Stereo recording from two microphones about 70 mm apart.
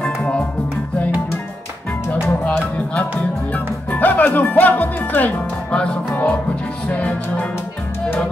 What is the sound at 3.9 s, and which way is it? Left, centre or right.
Speech, left.